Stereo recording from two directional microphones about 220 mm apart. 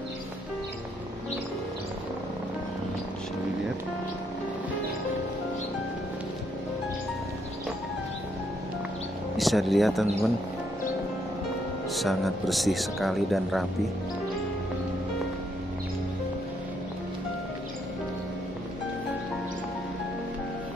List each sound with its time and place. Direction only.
9.4 s speech: centre (ahead or behind)
11.9 s speech: centre (ahead or behind)